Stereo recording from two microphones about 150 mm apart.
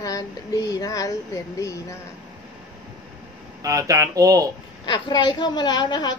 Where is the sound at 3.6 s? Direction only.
20° right (ahead or behind).